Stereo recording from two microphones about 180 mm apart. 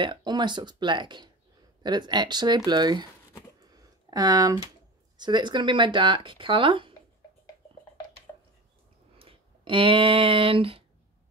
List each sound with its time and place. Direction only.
0.0 s speech: 25° right (ahead or behind)
3.6 s a sound: 20° right (ahead or behind)
5.1 s speech: 25° right (ahead or behind)
9.2 s speech: 30° right (ahead or behind)